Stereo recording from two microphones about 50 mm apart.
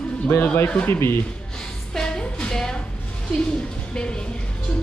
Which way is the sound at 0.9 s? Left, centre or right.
Left.